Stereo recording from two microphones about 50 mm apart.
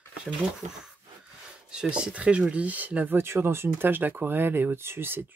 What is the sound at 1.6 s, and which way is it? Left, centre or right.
Speech, centre.